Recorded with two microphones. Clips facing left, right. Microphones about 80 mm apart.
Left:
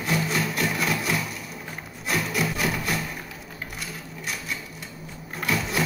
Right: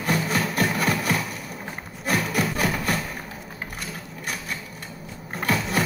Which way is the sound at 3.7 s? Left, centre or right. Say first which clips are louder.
Right 1 dB; right.